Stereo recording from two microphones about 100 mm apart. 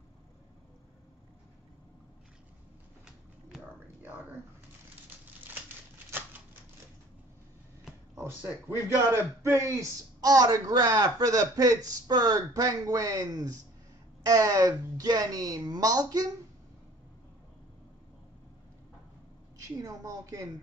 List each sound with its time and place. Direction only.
3.8 s whispering: 20° right (ahead or behind)
6.0 s typewriter: 20° right (ahead or behind)
8.1 s a man's voice: 25° right (ahead or behind)
19.8 s a man's voice: 30° right (ahead or behind)